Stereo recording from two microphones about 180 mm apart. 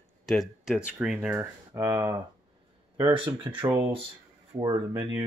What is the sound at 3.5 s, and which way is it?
Speech, 25° right (ahead or behind).